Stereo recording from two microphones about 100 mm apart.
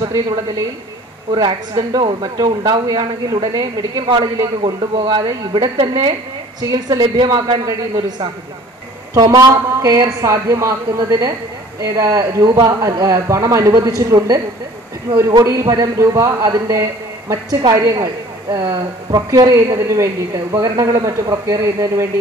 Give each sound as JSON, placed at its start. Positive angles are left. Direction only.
{"t": 0.0, "sound": "a woman's voice", "side_deg": -40}
{"t": 9.1, "sound": "speech", "side_deg": -35}